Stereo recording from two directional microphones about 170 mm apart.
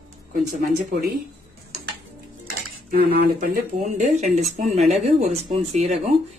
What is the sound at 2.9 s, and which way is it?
Speech, 70° right (ahead or behind).